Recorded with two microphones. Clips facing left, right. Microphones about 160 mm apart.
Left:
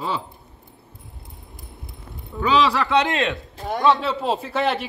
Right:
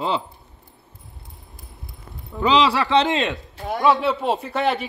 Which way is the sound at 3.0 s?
20° right (ahead or behind).